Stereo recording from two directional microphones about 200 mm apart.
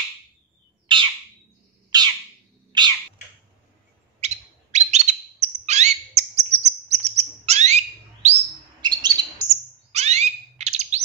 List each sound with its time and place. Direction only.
0.9 s bird: 25° right (ahead or behind)
2.7 s cat: 20° right (ahead or behind)
4.2 s bird: 35° right (ahead or behind)
8.8 s chirp: 20° right (ahead or behind)
9.9 s bird: 35° right (ahead or behind)